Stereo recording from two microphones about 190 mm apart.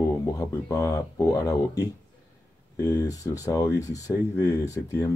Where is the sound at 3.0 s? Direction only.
20° left (ahead or behind).